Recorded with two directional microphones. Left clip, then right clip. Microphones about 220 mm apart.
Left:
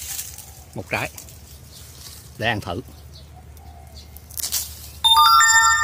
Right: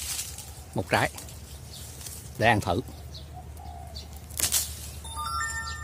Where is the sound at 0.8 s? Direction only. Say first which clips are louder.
Right 1 dB; 15° right (ahead or behind).